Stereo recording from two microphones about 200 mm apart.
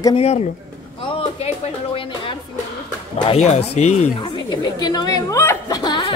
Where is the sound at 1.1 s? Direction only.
30° left (ahead or behind).